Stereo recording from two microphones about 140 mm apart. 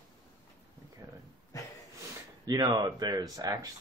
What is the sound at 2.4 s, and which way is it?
Speech, 30° right (ahead or behind).